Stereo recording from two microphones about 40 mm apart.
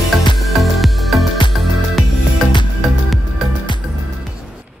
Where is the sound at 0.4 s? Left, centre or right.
Centre.